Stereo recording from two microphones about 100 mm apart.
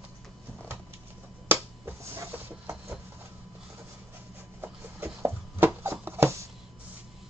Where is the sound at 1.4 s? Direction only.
25° right (ahead or behind).